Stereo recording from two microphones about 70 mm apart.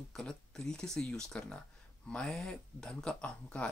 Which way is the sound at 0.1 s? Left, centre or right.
Centre.